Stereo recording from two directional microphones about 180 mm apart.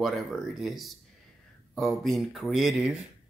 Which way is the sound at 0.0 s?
Centre (ahead or behind).